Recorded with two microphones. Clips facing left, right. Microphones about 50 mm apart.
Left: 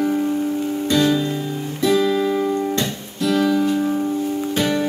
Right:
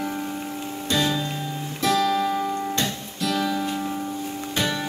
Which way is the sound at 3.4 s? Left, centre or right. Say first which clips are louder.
Left 8 dB; centre.